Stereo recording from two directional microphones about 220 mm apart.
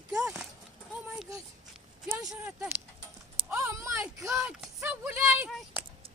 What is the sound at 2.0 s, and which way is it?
Speech, 5° right (ahead or behind).